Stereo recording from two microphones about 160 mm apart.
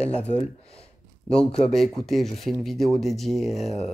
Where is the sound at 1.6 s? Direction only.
Centre (ahead or behind).